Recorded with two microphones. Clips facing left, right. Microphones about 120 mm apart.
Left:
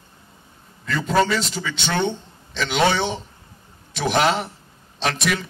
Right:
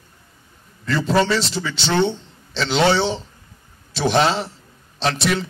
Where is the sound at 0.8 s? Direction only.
30° right (ahead or behind).